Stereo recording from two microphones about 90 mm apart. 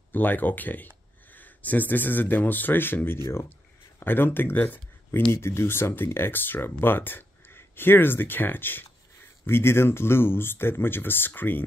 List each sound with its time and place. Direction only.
0.1 s speech: 20° left (ahead or behind)